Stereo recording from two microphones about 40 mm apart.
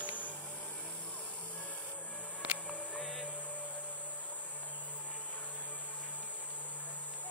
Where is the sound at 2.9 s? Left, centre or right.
Centre.